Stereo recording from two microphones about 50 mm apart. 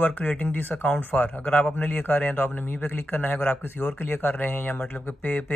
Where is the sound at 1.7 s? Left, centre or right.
Left.